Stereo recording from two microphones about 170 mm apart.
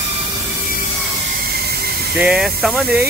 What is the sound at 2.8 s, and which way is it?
Speech, 65° right (ahead or behind).